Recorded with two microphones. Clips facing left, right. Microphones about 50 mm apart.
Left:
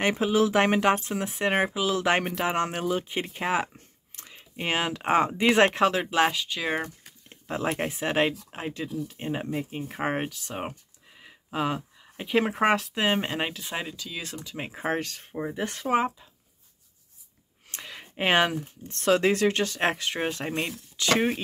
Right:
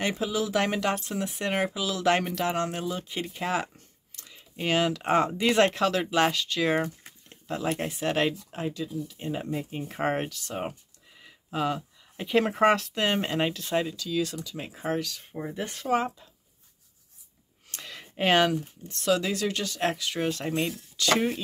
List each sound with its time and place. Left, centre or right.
0.0 s speech: left; by 6.9 s centre
7.2 s speech: left
8.0 s speech: left
8.5 s speech: left
9.5 s speech: centre; by 15.2 s left
15.3 s speech: centre
17.6 s a sound: left
18.9 s speech: left